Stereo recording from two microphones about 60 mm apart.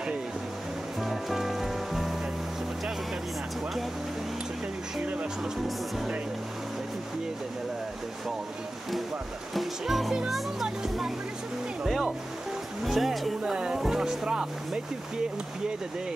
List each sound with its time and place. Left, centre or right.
1.0 s music: centre
5.0 s music: right
9.5 s a child's voice: centre
11.8 s music: centre
12.8 s speech: centre
13.4 s speech: centre